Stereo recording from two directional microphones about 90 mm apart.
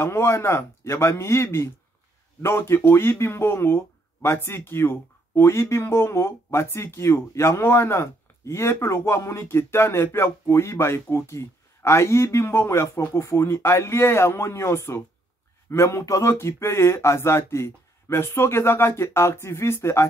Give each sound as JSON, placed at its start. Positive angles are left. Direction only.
{"t": 0.0, "sound": "speech", "side_deg": 30}